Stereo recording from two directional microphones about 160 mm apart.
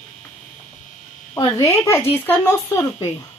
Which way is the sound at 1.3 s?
15° left (ahead or behind).